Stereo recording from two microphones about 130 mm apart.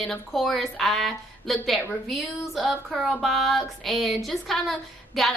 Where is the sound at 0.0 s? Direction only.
5° left (ahead or behind).